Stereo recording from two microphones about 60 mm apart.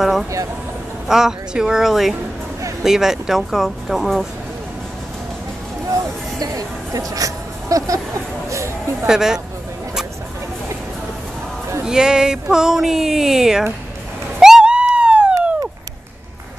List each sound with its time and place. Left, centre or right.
0.0 s speech: centre
6.4 s speech: right
8.5 s a sound: right
9.0 s speech: centre
11.8 s speech: centre
14.4 s a sound: centre